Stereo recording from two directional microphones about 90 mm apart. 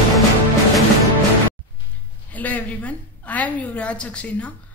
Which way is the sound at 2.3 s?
15° left (ahead or behind).